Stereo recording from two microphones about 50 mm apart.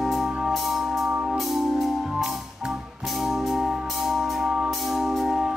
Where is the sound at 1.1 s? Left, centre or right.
Right.